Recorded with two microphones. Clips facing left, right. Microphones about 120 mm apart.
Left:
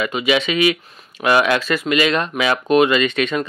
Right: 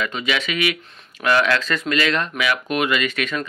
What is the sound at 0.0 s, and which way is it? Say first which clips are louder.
Speech: left 6 dB; 15° left (ahead or behind).